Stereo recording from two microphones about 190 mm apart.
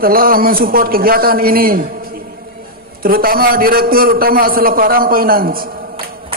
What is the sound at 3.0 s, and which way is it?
A man's voice, 50° right (ahead or behind).